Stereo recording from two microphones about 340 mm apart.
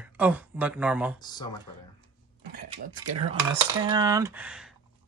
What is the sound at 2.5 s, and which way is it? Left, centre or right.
Speech, right.